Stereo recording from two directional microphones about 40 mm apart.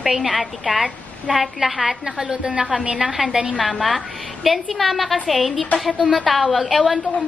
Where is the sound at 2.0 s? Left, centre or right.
Centre.